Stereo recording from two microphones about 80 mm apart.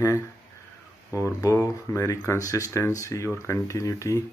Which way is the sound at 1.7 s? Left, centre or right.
Left.